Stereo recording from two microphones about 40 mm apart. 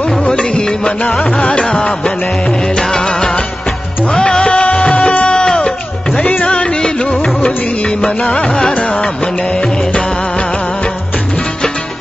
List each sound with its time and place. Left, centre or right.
0.3 s music: left
8.7 s music: left